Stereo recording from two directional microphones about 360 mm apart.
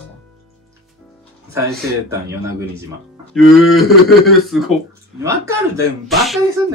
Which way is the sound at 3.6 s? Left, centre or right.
Centre.